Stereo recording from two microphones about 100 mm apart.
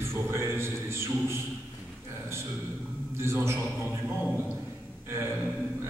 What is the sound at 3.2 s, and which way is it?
Speech, 25° right (ahead or behind).